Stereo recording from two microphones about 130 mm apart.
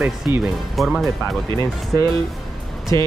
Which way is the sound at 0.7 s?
Centre (ahead or behind).